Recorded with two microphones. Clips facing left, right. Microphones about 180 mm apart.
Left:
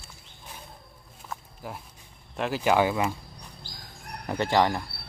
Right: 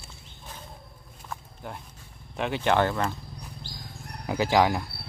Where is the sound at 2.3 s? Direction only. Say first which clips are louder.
Left 1 dB; centre (ahead or behind).